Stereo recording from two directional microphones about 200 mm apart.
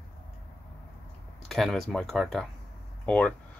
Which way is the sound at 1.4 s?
Centre (ahead or behind).